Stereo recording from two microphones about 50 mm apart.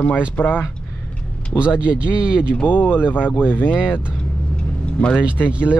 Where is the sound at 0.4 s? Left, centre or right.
Left.